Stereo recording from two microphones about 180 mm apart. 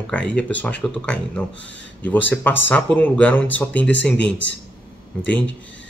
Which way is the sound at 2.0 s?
10° left (ahead or behind).